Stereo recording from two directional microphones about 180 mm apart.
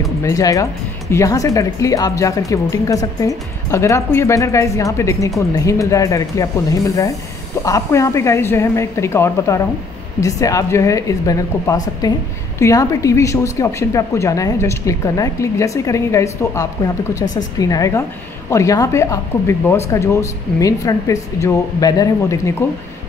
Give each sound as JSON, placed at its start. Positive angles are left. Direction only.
{"t": 0.2, "sound": "a woman's voice", "side_deg": 20}